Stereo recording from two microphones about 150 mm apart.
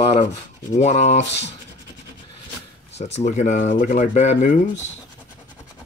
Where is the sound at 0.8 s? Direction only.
50° left (ahead or behind).